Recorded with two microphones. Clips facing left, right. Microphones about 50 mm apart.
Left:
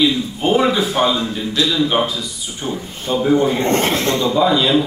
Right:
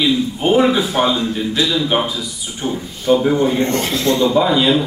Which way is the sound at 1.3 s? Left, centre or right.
Centre.